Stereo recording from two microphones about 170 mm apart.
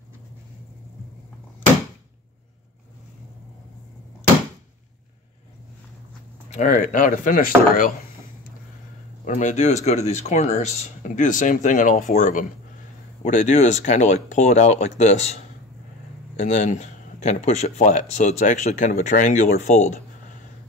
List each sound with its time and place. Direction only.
6.5 s speech: 45° left (ahead or behind)
9.2 s speech: 45° left (ahead or behind)